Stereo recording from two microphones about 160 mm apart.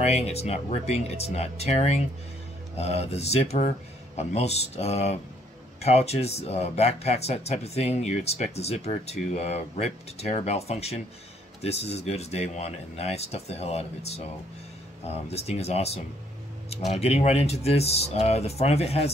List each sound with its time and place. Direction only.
0.0 s speech: 40° left (ahead or behind)